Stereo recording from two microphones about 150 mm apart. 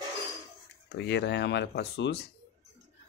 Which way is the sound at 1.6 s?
90° left.